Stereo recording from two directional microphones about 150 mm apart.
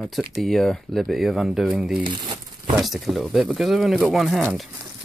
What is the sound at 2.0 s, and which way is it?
Speech, 30° right (ahead or behind).